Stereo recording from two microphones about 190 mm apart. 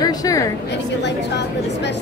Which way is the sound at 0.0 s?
20° left (ahead or behind).